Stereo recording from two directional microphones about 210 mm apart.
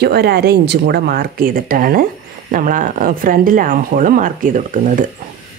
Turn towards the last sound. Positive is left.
turn(degrees=-40)  # may be behind; listen again after turning